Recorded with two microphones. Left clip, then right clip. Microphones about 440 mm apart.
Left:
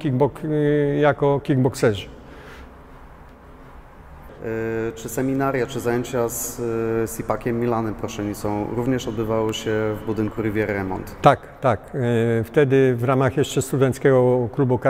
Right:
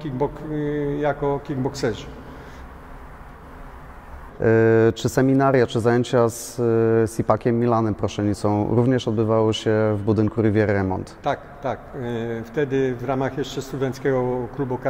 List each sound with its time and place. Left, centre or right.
0.0 s a man's voice: left
4.4 s speech: right
11.1 s a man's voice: left